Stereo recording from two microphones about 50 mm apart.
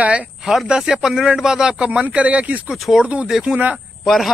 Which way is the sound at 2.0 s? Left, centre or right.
Right.